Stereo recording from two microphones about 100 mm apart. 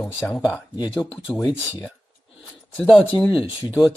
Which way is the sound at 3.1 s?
50° left (ahead or behind).